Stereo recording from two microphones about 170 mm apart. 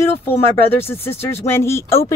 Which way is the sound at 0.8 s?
15° left (ahead or behind).